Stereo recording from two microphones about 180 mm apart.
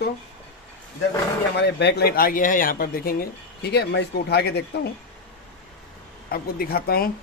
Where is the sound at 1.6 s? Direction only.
70° left (ahead or behind).